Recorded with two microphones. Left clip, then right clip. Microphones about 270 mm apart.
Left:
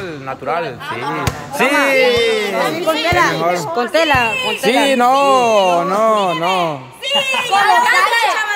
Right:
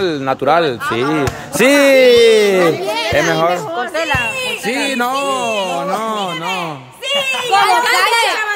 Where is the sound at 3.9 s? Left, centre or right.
Left.